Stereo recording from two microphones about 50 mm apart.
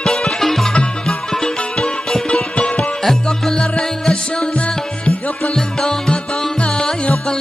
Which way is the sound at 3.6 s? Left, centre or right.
Centre.